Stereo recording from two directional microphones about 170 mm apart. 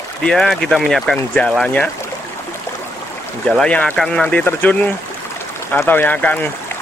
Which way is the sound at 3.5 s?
5° left (ahead or behind).